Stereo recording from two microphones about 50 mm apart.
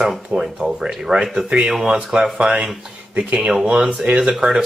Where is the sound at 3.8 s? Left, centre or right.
Right.